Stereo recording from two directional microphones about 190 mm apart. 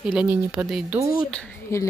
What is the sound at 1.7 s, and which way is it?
Speech, 15° left (ahead or behind).